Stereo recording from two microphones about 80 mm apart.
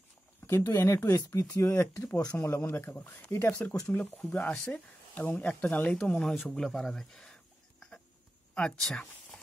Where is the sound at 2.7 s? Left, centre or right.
Left.